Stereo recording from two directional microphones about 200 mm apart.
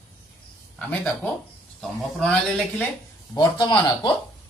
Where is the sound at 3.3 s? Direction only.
25° left (ahead or behind).